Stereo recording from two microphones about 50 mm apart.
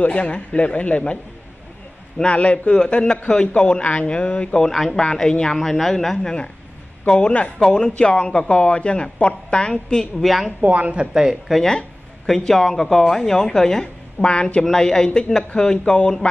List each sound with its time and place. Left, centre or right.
0.0 s speech: left
4.6 s speech: centre
4.9 s a woman's voice: centre
5.6 s speech: centre
7.1 s speech: centre
10.2 s speech: centre
10.6 s speech: right
11.1 s speech: centre
12.3 s a woman's voice: centre
14.3 s speech: left
14.6 s a woman's voice: centre